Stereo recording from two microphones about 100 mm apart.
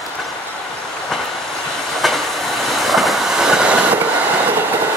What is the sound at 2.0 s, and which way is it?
Train, centre (ahead or behind).